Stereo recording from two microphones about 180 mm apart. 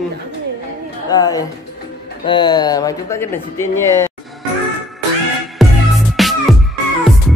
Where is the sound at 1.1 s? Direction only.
20° left (ahead or behind).